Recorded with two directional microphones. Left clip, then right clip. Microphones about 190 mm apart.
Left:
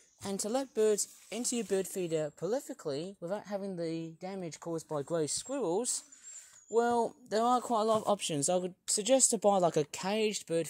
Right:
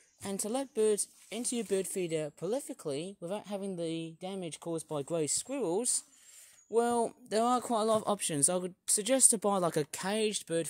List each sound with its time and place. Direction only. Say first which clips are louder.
0.2 s speech: left 1 dB; 10° right (ahead or behind)